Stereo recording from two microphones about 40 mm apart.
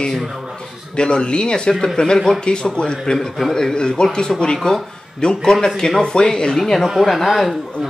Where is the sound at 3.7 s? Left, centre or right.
Left.